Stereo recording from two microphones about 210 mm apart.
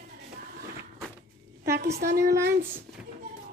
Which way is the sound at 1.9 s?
50° right (ahead or behind).